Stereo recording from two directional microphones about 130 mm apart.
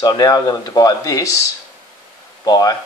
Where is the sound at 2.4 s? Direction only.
30° left (ahead or behind).